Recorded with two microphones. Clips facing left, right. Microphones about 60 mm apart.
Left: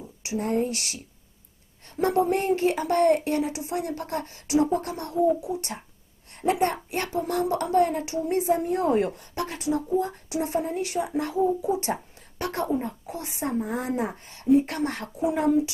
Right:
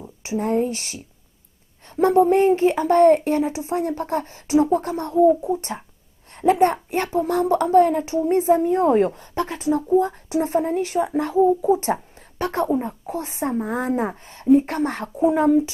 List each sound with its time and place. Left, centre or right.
0.2 s speech: right
2.0 s speech: right
4.6 s a sound: centre
4.8 s a woman's voice: right